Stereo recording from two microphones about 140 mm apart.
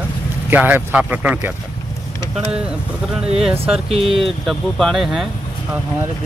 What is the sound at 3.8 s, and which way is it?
Speech, 45° right (ahead or behind).